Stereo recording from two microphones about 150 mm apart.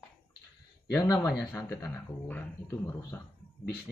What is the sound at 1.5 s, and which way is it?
Speech, 15° left (ahead or behind).